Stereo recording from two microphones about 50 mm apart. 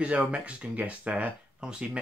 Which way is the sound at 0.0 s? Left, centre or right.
Right.